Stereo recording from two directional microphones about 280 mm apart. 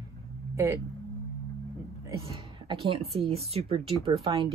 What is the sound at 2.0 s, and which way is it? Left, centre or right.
Speech, centre.